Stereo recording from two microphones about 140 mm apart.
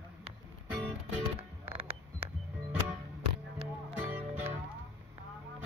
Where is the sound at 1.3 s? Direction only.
45° right (ahead or behind).